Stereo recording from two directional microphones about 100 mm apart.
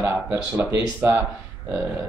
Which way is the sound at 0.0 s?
30° right (ahead or behind).